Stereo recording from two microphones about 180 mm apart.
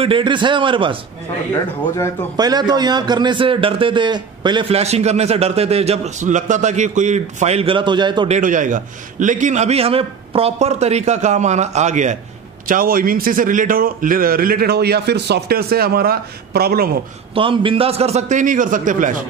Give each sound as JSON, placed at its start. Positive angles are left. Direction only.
{"t": 0.0, "sound": "a man's voice", "side_deg": -30}
{"t": 2.3, "sound": "a man's voice", "side_deg": -20}
{"t": 8.3, "sound": "a man's voice", "side_deg": -45}
{"t": 17.3, "sound": "a man's voice", "side_deg": -30}